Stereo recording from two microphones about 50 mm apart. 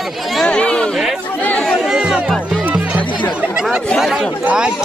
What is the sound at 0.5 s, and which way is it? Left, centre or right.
Chatter, left.